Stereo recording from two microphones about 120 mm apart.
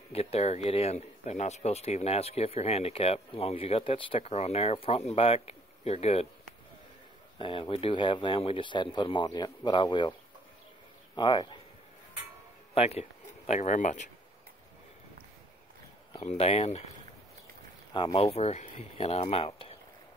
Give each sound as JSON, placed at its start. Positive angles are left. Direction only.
{"t": 0.1, "sound": "speech", "side_deg": 55}
{"t": 7.3, "sound": "speech", "side_deg": 45}
{"t": 11.1, "sound": "speech", "side_deg": 40}
{"t": 12.7, "sound": "speech", "side_deg": 60}
{"t": 13.5, "sound": "speech", "side_deg": 80}
{"t": 16.2, "sound": "speech", "side_deg": 65}
{"t": 17.9, "sound": "speech", "side_deg": 50}